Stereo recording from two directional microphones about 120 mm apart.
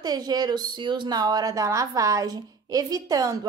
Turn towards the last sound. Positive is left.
turn(degrees=-30)  # may be behind; listen again after turning